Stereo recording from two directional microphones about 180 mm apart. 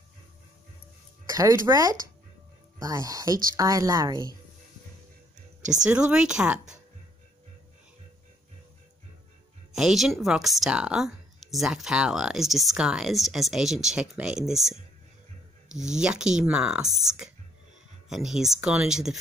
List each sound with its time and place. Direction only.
1.3 s speech: 20° right (ahead or behind)
5.9 s speech: 5° right (ahead or behind)
9.7 s speech: centre (ahead or behind)
15.9 s speech: 5° right (ahead or behind)